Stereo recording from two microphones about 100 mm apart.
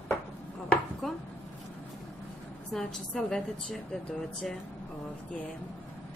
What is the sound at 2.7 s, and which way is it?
A woman's voice, centre (ahead or behind).